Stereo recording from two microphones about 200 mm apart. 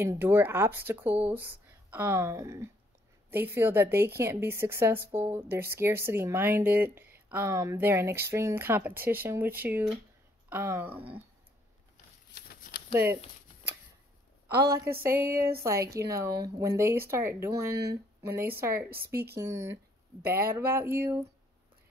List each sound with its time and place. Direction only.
0.0 s a woman's voice: 10° right (ahead or behind)
12.4 s a sound: 50° left (ahead or behind)
12.9 s a woman's voice: 10° right (ahead or behind)
15.0 s a woman's voice: 10° right (ahead or behind)
20.2 s a woman's voice: 10° right (ahead or behind)